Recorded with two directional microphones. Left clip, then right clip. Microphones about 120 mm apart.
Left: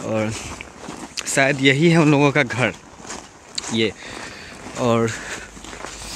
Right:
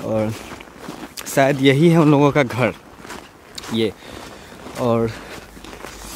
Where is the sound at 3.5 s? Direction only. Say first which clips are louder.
Even; 15° right (ahead or behind).